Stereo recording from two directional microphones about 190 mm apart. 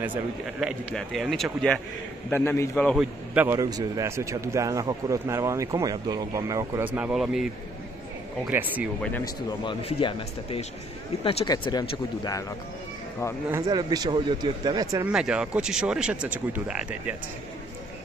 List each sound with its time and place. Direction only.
0.0 s a man's voice: 5° right (ahead or behind)
3.3 s a man's voice: 15° right (ahead or behind)
8.5 s a man's voice: 10° right (ahead or behind)
9.2 s a man's voice: 25° left (ahead or behind)
13.5 s speech: 20° right (ahead or behind)
15.0 s speech: 5° right (ahead or behind)